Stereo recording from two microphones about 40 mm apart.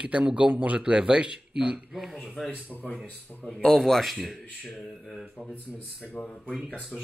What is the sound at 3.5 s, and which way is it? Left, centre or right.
Speech, centre.